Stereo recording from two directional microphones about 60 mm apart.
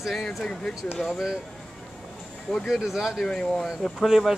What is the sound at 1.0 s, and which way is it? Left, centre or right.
Speech, centre.